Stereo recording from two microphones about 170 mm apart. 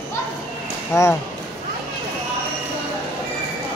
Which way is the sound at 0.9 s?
15° left (ahead or behind).